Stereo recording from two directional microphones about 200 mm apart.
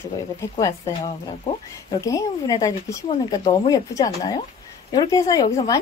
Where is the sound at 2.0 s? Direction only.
15° left (ahead or behind).